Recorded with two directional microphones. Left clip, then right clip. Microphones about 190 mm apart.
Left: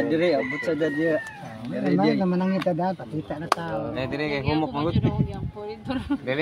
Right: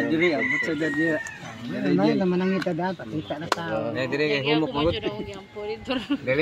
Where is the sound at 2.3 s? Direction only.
65° left (ahead or behind).